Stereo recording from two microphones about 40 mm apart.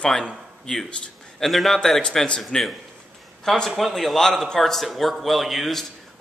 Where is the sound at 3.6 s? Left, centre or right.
Centre.